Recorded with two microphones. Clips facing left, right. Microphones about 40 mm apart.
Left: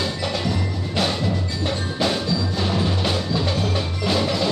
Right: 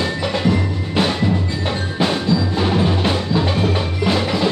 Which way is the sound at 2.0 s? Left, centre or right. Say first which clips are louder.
Right 5 dB; right.